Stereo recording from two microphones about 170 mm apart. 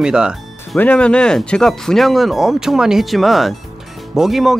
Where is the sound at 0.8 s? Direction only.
5° left (ahead or behind).